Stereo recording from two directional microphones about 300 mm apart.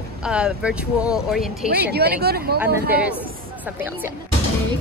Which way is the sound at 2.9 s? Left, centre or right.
Centre.